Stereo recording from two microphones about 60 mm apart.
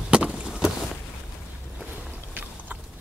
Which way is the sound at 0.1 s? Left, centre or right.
Centre.